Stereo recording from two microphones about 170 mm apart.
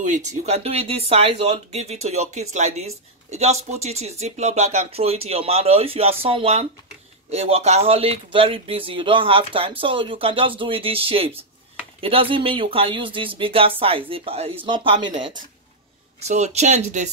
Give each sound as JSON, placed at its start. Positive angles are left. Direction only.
{"t": 0.0, "sound": "speech", "side_deg": -45}
{"t": 16.2, "sound": "speech", "side_deg": -40}